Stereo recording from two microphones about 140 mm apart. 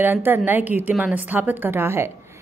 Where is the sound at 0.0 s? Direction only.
15° right (ahead or behind).